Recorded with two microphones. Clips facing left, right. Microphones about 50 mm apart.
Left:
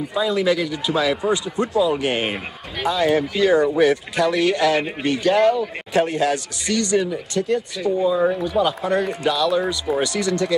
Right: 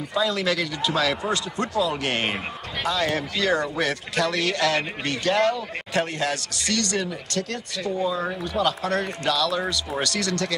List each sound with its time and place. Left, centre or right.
0.1 s speech: centre